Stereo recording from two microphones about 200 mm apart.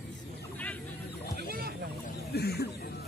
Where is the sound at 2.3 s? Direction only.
55° left (ahead or behind).